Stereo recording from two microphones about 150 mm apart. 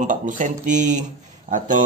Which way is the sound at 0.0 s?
60° right (ahead or behind).